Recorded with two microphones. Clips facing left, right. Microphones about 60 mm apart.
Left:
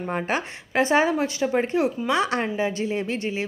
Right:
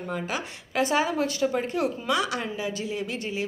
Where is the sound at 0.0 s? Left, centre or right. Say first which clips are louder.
Left 5 dB; left.